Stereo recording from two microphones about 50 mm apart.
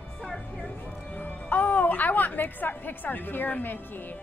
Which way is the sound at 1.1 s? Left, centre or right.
Left.